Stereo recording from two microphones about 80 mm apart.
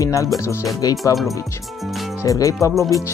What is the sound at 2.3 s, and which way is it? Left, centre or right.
Speech, left.